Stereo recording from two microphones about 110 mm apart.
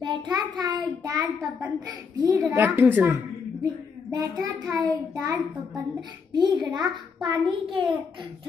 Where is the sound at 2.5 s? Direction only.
20° right (ahead or behind).